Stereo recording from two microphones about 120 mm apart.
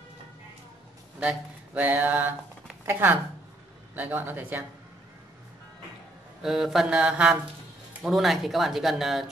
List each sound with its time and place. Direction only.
1.2 s speech: 10° right (ahead or behind)
6.4 s speech: 5° right (ahead or behind)